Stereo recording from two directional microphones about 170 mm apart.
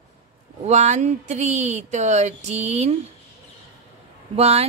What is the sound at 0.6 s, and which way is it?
Speech, 45° right (ahead or behind).